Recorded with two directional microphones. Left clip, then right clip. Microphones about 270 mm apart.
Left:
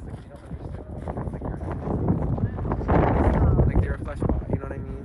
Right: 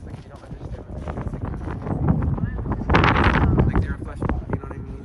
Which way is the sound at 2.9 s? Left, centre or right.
Left.